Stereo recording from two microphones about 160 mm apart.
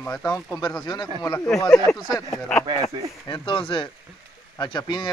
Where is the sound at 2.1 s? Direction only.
20° left (ahead or behind).